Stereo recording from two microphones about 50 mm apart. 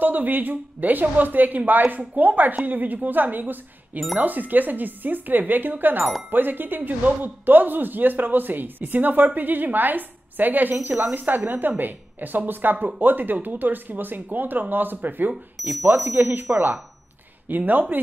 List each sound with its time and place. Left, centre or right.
0.0 s a man's voice: right
15.5 s speech: centre
16.2 s a man's voice: right
17.5 s a man's voice: right